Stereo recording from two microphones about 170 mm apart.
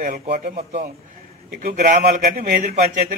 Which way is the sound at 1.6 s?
55° right (ahead or behind).